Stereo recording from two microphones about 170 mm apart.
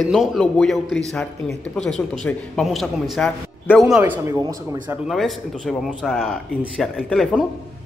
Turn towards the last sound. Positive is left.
turn(degrees=5)  # may be behind; listen again after turning